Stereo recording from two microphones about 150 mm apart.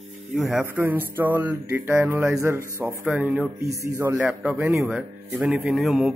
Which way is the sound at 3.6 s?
20° right (ahead or behind).